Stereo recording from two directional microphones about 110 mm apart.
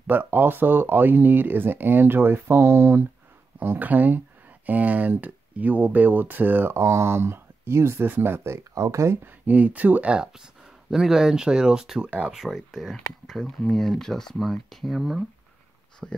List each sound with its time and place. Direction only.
0.0 s speech: 15° right (ahead or behind)